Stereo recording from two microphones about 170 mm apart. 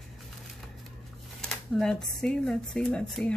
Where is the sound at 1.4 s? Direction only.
5° left (ahead or behind).